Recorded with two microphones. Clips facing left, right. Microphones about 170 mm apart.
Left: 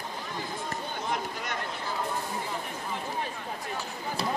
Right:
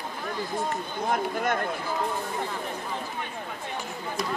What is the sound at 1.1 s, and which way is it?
Speech, 50° right (ahead or behind).